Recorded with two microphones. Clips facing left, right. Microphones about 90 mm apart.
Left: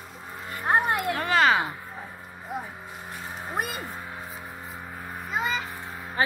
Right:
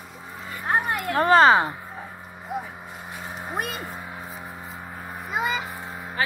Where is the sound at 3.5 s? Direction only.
Centre (ahead or behind).